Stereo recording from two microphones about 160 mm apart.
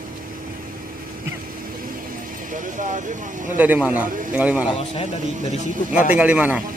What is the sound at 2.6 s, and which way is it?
Speech, 50° right (ahead or behind).